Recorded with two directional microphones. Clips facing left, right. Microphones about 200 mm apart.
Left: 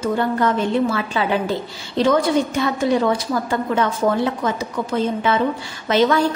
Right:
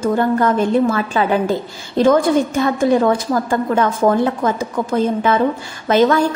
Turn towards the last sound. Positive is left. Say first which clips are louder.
# right 3 dB
turn(degrees=-50)  # may be behind; listen again after turning